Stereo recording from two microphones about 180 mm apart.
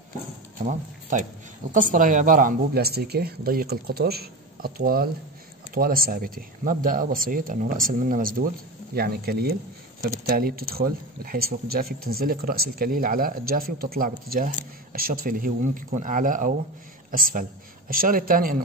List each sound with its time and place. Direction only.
0.6 s a woman's voice: 45° right (ahead or behind)